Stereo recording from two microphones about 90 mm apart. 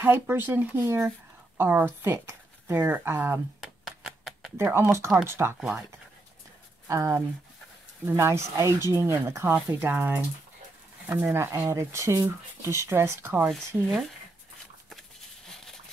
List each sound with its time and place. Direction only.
0.0 s speech: 25° right (ahead or behind)
3.6 s a sound: 5° right (ahead or behind)
4.6 s speech: 25° right (ahead or behind)
6.9 s speech: 35° right (ahead or behind)
11.3 s speech: 30° right (ahead or behind)
14.9 s a sound: centre (ahead or behind)